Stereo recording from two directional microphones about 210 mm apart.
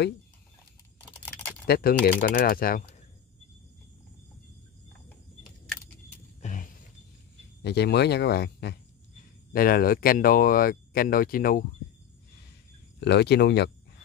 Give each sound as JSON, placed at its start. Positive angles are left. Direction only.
{"t": 1.7, "sound": "speech", "side_deg": 45}
{"t": 6.4, "sound": "a sound", "side_deg": 35}
{"t": 7.6, "sound": "speech", "side_deg": 50}
{"t": 13.0, "sound": "speech", "side_deg": 55}